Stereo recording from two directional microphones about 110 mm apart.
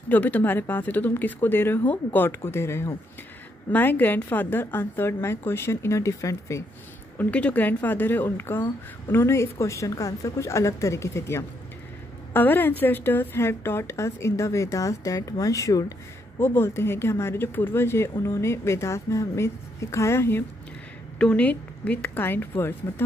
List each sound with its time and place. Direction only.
0.1 s speech: 15° left (ahead or behind)
7.2 s speech: 10° left (ahead or behind)